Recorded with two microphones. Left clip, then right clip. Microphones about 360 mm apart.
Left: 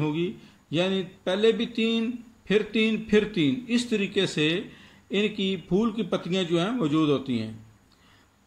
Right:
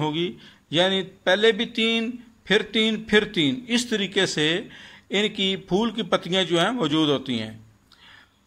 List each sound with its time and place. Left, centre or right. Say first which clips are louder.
0.0 s speech: right 3 dB; right